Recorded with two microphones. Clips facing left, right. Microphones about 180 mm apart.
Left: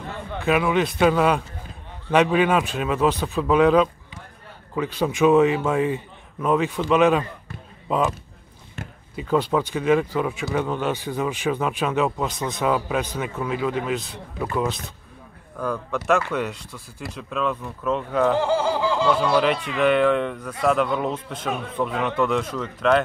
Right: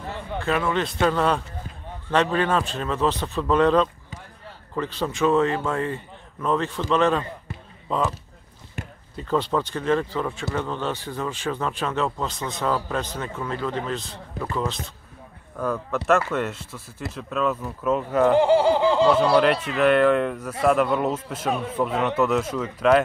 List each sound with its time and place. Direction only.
0.4 s speech: 10° left (ahead or behind)
8.8 s basketball bounce: 15° right (ahead or behind)
9.1 s speech: 10° left (ahead or behind)
15.5 s a man's voice: 5° right (ahead or behind)
18.4 s snicker: 20° right (ahead or behind)
18.9 s snicker: 35° right (ahead or behind)
19.8 s a man's voice: centre (ahead or behind)